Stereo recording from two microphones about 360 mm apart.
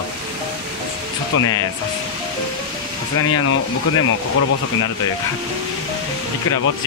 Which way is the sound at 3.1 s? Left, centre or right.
Left.